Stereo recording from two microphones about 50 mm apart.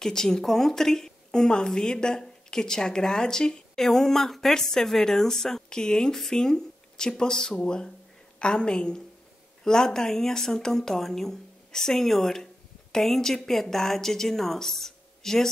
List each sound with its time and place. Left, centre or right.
0.0 s a woman's voice: centre